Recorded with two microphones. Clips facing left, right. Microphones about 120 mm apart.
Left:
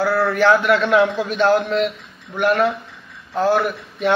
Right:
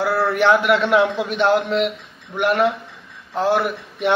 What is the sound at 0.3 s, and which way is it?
Speech, 20° right (ahead or behind).